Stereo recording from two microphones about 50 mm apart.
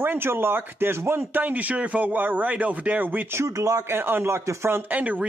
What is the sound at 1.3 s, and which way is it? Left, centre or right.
Speech, right.